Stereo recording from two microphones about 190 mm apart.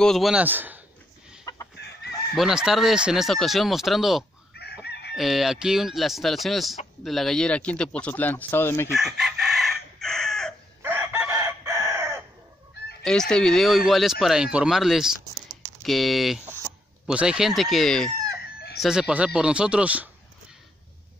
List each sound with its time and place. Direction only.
0.0 s speech: centre (ahead or behind)
1.5 s chicken: 15° left (ahead or behind)
2.3 s speech: 5° right (ahead or behind)
4.8 s chicken: 60° left (ahead or behind)
5.1 s speech: centre (ahead or behind)
8.9 s chicken: centre (ahead or behind)
10.8 s chicken: 10° right (ahead or behind)
13.0 s speech: 5° left (ahead or behind)